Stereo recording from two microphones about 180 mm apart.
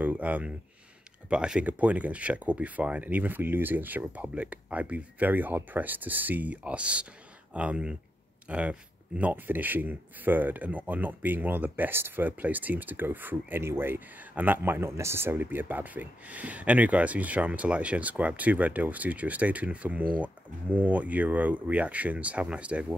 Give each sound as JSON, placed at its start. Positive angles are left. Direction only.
{"t": 0.0, "sound": "speech", "side_deg": -10}